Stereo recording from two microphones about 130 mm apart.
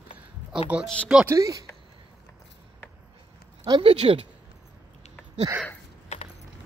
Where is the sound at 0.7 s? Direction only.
10° right (ahead or behind).